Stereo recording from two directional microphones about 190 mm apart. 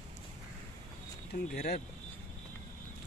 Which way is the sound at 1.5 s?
55° left (ahead or behind).